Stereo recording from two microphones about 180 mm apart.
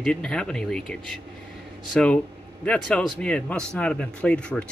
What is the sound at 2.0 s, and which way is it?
A man's voice, 5° left (ahead or behind).